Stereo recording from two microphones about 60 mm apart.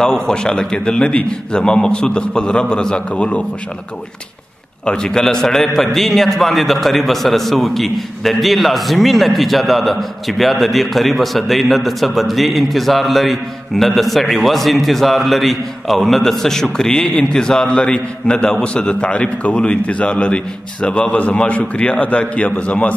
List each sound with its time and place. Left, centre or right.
0.0 s a man's voice: centre
4.8 s a man's voice: centre